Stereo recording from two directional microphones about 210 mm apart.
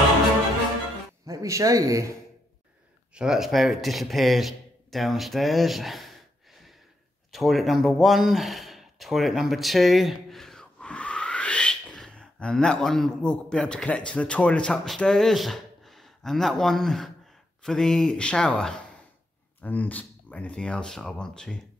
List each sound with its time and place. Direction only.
1.2 s speech: 15° right (ahead or behind)
3.2 s speech: centre (ahead or behind)
7.3 s speech: centre (ahead or behind)